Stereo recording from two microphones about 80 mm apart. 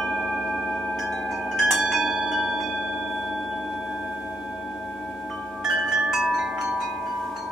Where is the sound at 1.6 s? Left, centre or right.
Centre.